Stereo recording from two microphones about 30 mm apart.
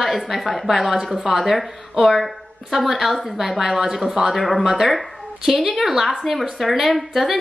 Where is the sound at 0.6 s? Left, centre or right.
Centre.